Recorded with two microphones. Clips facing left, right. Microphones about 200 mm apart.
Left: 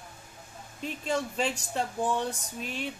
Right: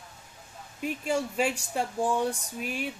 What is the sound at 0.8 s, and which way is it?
Speech, 10° right (ahead or behind).